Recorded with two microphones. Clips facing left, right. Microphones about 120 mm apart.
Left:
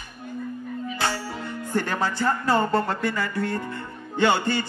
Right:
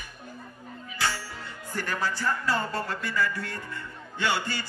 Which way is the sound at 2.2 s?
55° left (ahead or behind).